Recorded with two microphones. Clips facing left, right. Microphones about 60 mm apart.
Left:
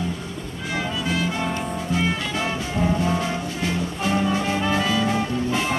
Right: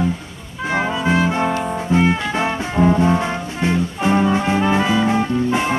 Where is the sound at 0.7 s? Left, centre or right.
Right.